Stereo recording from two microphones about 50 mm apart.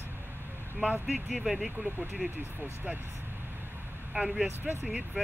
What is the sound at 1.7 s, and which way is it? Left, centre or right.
Speech, right.